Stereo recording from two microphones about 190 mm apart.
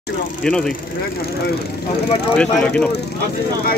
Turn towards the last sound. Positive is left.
turn(degrees=5)  # may be behind; listen again after turning